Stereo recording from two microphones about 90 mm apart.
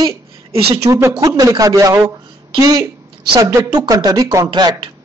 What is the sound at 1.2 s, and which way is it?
A man's voice, 40° right (ahead or behind).